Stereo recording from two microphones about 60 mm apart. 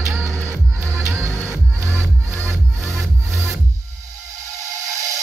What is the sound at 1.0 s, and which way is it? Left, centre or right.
Music, right.